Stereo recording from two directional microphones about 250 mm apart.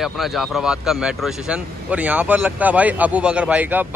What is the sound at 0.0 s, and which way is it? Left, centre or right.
Speech, centre.